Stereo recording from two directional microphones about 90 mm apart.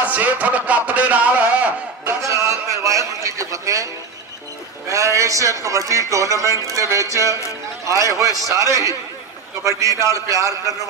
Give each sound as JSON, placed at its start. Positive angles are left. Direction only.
{"t": 0.0, "sound": "speech", "side_deg": -20}
{"t": 2.0, "sound": "a man's voice", "side_deg": -35}